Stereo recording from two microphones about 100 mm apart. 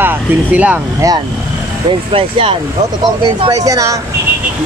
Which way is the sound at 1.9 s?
65° right (ahead or behind).